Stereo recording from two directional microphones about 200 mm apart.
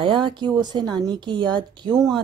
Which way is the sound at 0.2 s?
20° right (ahead or behind).